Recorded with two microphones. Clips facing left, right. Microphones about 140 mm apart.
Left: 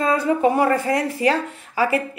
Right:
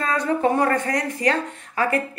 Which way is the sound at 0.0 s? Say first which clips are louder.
Left 3 dB; 15° left (ahead or behind).